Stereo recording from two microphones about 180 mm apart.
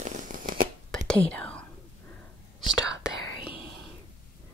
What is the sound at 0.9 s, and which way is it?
Whispering, 5° left (ahead or behind).